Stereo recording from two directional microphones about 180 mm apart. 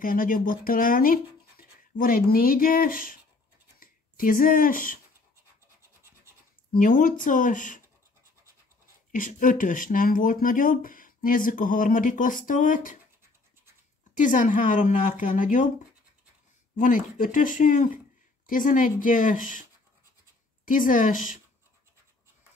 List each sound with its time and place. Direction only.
0.0 s speech: 50° left (ahead or behind)
6.7 s speech: 45° left (ahead or behind)
9.1 s speech: 45° left (ahead or behind)
14.1 s speech: 45° left (ahead or behind)
16.7 s speech: 45° left (ahead or behind)
20.6 s speech: 45° left (ahead or behind)